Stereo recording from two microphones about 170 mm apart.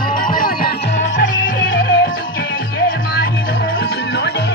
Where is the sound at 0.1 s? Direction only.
55° left (ahead or behind).